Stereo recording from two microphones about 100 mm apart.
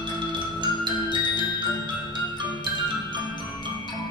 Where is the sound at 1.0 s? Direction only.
45° left (ahead or behind).